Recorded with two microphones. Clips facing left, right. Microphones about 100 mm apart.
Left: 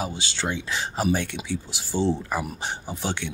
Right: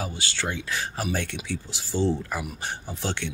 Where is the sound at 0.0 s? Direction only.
20° left (ahead or behind).